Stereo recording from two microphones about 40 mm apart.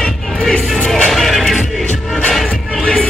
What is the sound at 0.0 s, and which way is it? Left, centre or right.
Music, centre.